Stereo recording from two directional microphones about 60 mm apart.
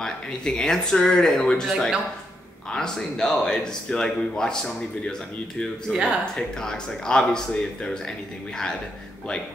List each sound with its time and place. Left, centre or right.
0.0 s speech: centre
5.9 s speech: centre
6.6 s speech: centre